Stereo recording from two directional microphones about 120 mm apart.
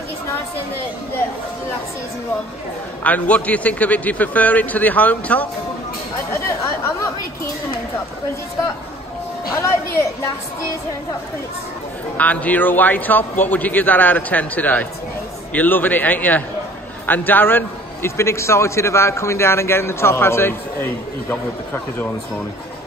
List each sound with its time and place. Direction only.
3.0 s a man's voice: 10° left (ahead or behind)
6.3 s chatter: 25° left (ahead or behind)
9.6 s a man's voice: 25° left (ahead or behind)
12.2 s a man's voice: 10° left (ahead or behind)